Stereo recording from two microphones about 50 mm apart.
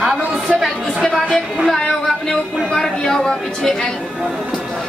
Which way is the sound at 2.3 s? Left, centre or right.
Centre.